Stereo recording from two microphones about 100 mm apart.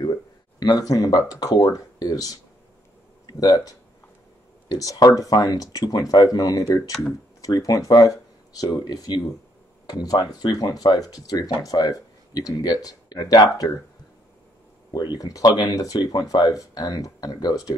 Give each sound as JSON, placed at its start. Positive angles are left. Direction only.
{"t": 0.0, "sound": "speech", "side_deg": 45}
{"t": 14.9, "sound": "speech", "side_deg": 45}